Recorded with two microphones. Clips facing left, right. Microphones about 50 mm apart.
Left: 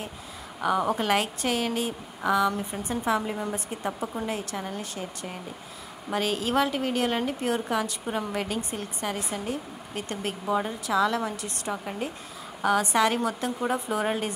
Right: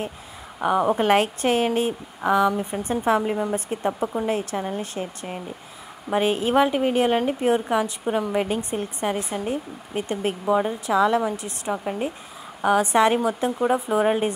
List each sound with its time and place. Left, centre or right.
0.6 s a woman's voice: right
2.8 s a woman's voice: right
3.2 s a woman's voice: centre
12.9 s a woman's voice: right